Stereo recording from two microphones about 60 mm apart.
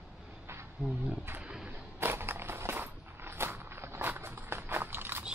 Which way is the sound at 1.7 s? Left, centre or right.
Right.